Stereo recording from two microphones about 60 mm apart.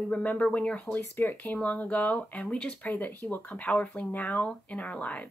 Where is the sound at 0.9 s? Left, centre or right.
Left; by 2.9 s centre.